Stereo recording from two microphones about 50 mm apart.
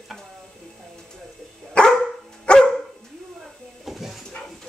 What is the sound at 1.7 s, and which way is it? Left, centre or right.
Dog, centre.